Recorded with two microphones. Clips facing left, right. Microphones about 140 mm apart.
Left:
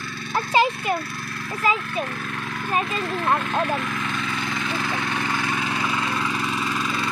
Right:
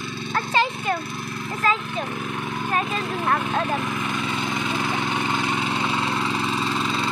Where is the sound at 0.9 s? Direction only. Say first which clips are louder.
Even; 20° right (ahead or behind).